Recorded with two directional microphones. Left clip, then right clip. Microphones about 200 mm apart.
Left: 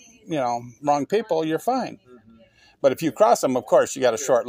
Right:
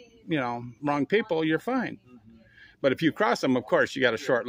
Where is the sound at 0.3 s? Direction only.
20° right (ahead or behind).